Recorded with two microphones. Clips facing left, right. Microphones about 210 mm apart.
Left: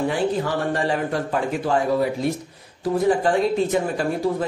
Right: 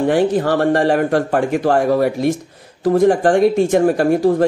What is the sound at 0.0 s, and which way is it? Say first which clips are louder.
A man's voice: right 7 dB; 75° right (ahead or behind).